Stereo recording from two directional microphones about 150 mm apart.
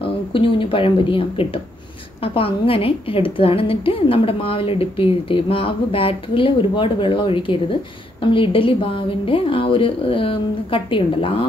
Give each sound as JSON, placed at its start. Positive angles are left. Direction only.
{"t": 0.3, "sound": "a woman's voice", "side_deg": 35}